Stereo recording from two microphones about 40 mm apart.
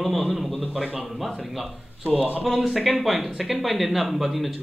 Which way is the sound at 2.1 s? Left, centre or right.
Right.